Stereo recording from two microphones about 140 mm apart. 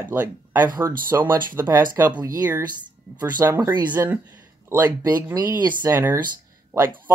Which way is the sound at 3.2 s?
15° right (ahead or behind).